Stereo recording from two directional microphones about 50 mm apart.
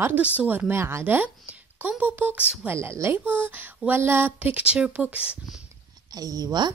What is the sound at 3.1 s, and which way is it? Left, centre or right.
Speech, right.